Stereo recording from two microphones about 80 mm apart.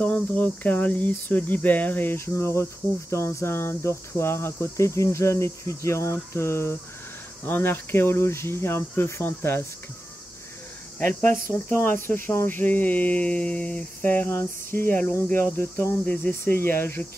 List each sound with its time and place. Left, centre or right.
0.0 s speech: centre
4.2 s cricket: left
11.2 s speech: left